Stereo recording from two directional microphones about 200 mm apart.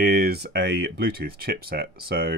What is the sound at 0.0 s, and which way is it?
Speech, 50° right (ahead or behind).